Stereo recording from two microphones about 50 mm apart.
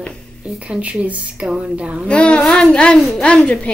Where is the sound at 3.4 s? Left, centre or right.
Left.